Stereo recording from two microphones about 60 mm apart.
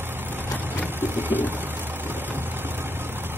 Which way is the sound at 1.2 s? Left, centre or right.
Right.